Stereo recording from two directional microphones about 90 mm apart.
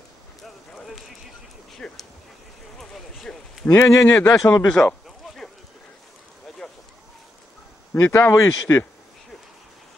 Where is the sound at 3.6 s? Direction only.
30° left (ahead or behind).